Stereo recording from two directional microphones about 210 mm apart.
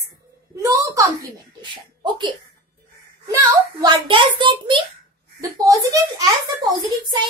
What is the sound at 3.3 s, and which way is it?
A child's voice, 20° right (ahead or behind).